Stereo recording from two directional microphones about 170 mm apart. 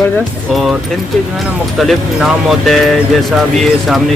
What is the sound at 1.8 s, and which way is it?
Speech, centre (ahead or behind).